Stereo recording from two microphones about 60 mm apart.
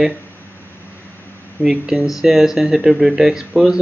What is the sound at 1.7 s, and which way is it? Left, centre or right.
Speech, centre.